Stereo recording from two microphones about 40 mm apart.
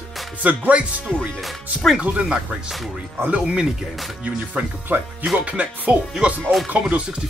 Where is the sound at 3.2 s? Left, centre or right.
Right.